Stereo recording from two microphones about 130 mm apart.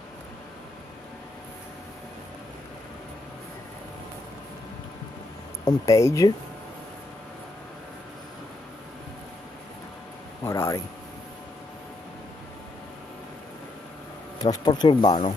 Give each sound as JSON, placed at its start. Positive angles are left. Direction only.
{"t": 5.7, "sound": "speech", "side_deg": 25}
{"t": 10.4, "sound": "a sound", "side_deg": 25}
{"t": 14.4, "sound": "speech", "side_deg": 30}